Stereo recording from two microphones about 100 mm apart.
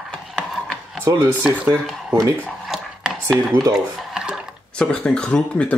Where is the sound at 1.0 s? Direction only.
30° right (ahead or behind).